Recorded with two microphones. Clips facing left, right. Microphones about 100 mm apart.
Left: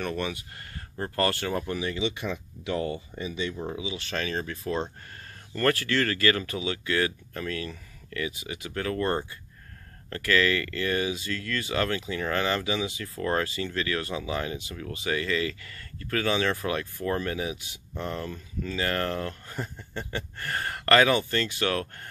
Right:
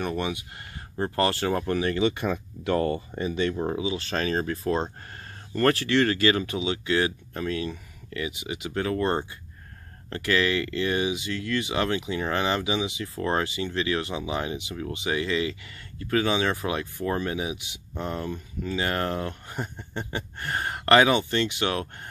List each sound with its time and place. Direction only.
0.0 s speech: 20° right (ahead or behind)
1.5 s speech: 50° right (ahead or behind)
5.5 s speech: 25° right (ahead or behind)